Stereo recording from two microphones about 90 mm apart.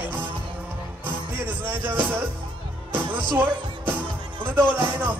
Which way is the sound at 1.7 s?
25° right (ahead or behind).